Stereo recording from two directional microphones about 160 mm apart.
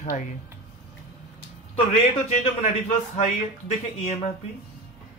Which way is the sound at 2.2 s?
45° left (ahead or behind).